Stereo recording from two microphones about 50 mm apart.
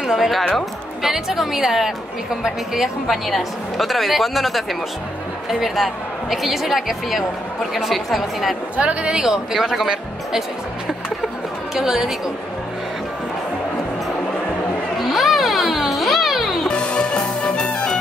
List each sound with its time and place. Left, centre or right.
0.0 s speech: centre
8.7 s speech: right
9.1 s speech: centre
11.7 s speech: centre
15.0 s music: centre
16.6 s music: left